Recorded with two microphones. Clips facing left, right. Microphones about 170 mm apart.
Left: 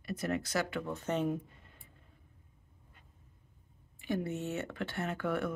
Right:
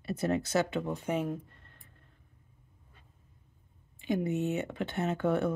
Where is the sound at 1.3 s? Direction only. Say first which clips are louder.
Left 1 dB; 5° left (ahead or behind).